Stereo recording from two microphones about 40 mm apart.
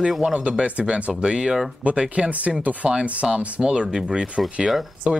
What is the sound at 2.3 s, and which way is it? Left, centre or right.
Speech, right.